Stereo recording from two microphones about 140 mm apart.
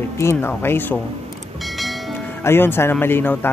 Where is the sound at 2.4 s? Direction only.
15° left (ahead or behind).